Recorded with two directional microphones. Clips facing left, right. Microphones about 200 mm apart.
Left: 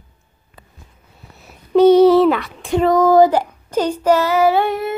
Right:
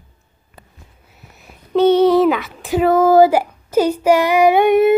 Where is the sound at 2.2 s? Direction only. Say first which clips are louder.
Even; centre (ahead or behind).